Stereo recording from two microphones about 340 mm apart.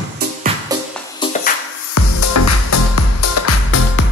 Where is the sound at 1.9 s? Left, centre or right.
Left.